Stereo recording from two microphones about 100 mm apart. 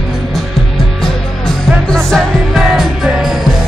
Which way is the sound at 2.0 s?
Centre (ahead or behind).